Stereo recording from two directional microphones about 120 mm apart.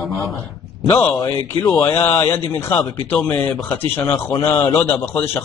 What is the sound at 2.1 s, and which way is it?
Speech, 20° left (ahead or behind).